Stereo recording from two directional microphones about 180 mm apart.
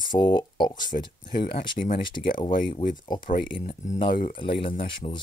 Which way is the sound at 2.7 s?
25° left (ahead or behind).